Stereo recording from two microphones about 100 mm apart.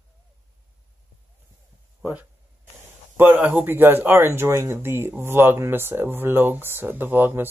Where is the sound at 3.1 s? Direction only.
20° right (ahead or behind).